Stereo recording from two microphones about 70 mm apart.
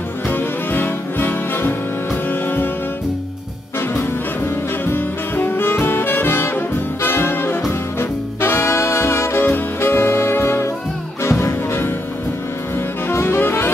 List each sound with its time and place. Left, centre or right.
0.3 s music: left
4.8 s saxophone: left
8.0 s music: left
13.1 s music: left